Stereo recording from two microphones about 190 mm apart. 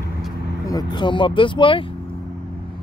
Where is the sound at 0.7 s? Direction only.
20° left (ahead or behind).